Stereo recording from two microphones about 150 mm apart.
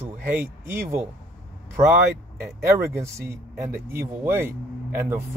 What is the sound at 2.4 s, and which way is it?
Speech, 15° right (ahead or behind).